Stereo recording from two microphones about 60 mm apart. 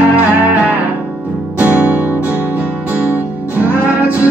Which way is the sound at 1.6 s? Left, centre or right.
Right.